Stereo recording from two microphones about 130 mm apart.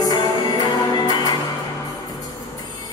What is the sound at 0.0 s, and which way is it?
Music, 30° left (ahead or behind).